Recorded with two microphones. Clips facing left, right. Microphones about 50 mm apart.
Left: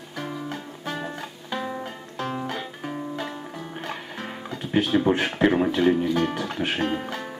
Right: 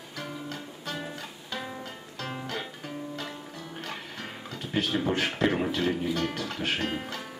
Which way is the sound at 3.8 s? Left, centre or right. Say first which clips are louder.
Left 4 dB; centre.